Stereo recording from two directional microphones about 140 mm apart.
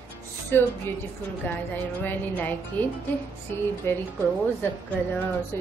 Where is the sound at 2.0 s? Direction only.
10° left (ahead or behind).